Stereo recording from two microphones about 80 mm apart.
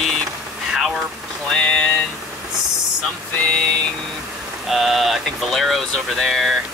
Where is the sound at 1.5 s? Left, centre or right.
Centre.